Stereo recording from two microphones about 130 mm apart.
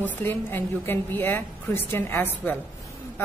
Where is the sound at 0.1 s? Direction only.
15° left (ahead or behind).